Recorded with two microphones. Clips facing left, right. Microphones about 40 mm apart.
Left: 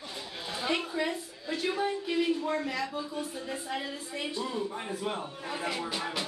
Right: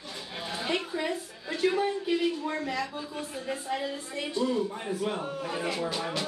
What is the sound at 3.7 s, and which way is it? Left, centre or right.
Speech, centre.